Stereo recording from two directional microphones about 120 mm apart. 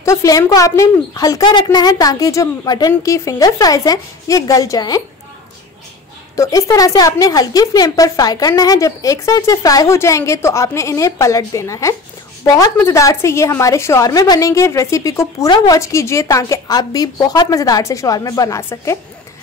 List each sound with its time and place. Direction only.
0.0 s a woman's voice: 25° left (ahead or behind)
6.3 s a woman's voice: 30° left (ahead or behind)